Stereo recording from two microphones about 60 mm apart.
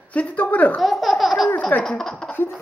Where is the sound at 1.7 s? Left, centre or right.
Left.